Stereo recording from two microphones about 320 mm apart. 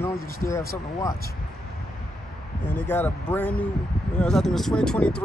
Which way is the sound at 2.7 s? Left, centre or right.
Centre.